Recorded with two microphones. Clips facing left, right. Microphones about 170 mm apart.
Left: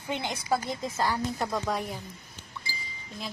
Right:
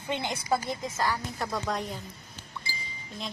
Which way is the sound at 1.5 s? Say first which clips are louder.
Right 1 dB; 5° left (ahead or behind).